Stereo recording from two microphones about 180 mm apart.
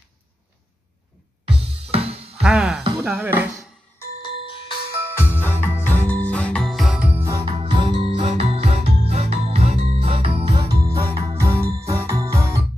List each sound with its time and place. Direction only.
1.5 s music: 30° right (ahead or behind)
2.4 s music: 5° right (ahead or behind)
3.0 s speech: 10° right (ahead or behind)
4.2 s music: 25° left (ahead or behind)
5.3 s music: 10° left (ahead or behind); by 12.6 s 15° right (ahead or behind)